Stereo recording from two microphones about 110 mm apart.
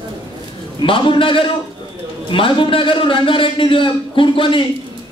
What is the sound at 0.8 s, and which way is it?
Speech, 50° left (ahead or behind).